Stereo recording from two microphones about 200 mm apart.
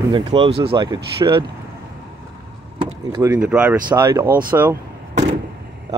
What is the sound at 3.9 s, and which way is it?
Speech, 20° right (ahead or behind).